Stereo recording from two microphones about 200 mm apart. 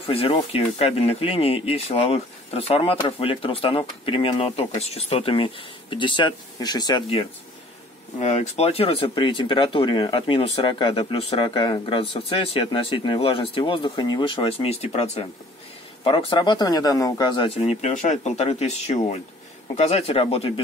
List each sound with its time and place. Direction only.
0.0 s speech: 25° left (ahead or behind)